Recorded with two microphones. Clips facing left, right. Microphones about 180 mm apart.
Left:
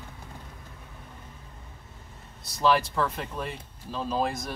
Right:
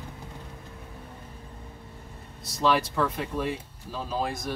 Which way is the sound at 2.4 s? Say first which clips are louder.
Left 1 dB; centre (ahead or behind).